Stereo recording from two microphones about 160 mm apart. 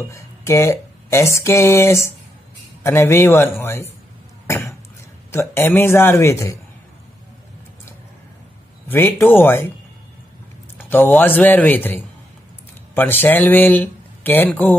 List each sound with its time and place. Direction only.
0.1 s a man's voice: 20° left (ahead or behind)
4.5 s cough: 15° left (ahead or behind)
5.3 s a man's voice: 15° left (ahead or behind)
8.8 s a man's voice: 15° left (ahead or behind)
10.8 s a man's voice: 10° left (ahead or behind)